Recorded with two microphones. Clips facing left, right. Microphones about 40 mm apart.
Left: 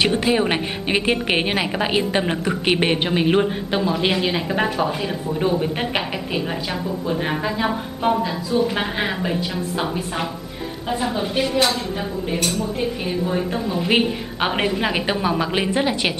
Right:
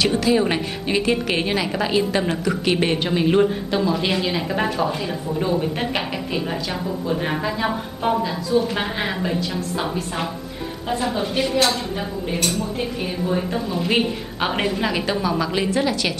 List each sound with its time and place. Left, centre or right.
0.0 s a woman's voice: left